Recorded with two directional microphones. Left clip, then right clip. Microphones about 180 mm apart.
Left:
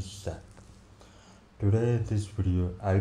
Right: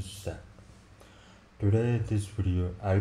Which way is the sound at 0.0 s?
15° left (ahead or behind).